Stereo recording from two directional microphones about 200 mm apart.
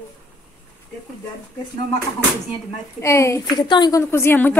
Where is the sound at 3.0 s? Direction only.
15° left (ahead or behind).